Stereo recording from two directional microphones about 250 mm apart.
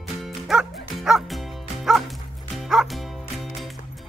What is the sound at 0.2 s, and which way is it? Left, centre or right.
Music, centre.